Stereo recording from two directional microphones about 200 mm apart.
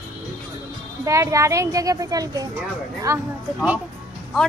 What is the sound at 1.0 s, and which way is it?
A child's voice, 15° right (ahead or behind).